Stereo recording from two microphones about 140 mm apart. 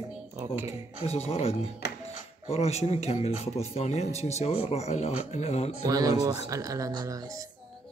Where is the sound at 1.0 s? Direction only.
45° left (ahead or behind).